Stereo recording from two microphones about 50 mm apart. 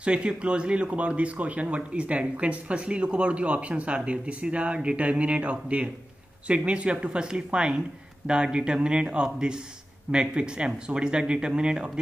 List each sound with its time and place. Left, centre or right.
0.0 s speech: right